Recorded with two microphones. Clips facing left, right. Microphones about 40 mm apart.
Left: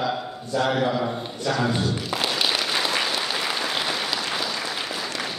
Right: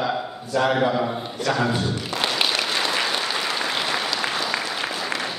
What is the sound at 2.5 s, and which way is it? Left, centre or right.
Applause, centre.